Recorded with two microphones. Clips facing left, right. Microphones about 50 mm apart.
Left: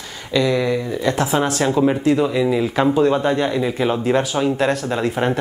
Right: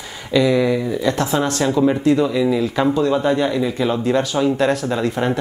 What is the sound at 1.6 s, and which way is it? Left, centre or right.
Speech, centre.